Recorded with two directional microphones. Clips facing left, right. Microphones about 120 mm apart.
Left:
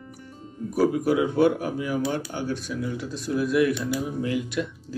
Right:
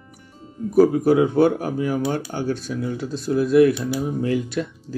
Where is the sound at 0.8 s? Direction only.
35° right (ahead or behind).